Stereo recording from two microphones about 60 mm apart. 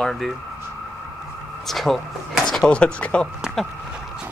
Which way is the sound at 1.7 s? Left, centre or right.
Centre.